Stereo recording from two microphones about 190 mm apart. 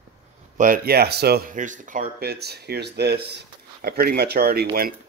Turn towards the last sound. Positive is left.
turn(degrees=-55)  # may be behind; listen again after turning